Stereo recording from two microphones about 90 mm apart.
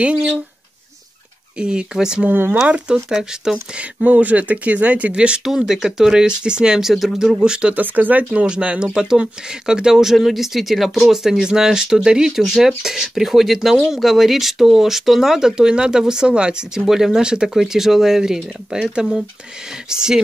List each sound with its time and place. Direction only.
1.6 s speech: 10° right (ahead or behind)
2.3 s speech: 25° right (ahead or behind)
2.7 s speech: 5° right (ahead or behind)
3.7 s speech: 15° right (ahead or behind)